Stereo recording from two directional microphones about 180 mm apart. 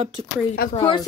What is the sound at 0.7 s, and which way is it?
Speech, 25° left (ahead or behind).